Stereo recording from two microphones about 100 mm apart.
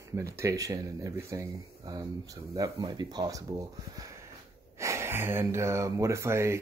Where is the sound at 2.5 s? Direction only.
45° right (ahead or behind).